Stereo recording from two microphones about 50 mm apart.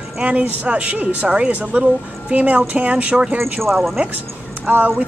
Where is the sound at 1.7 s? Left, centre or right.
Right.